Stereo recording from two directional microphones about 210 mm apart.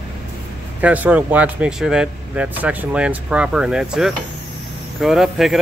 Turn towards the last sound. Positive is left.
turn(degrees=0)  # may be behind; listen again after turning